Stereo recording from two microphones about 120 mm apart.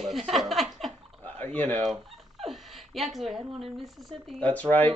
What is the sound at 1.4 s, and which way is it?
Speech, 15° left (ahead or behind).